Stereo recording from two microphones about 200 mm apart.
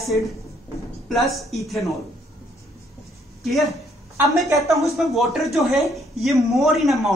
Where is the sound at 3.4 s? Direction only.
Centre (ahead or behind).